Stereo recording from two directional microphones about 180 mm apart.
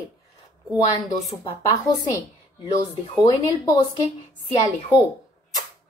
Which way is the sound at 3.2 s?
20° left (ahead or behind).